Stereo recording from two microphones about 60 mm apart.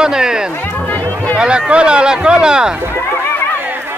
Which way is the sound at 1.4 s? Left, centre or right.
Centre.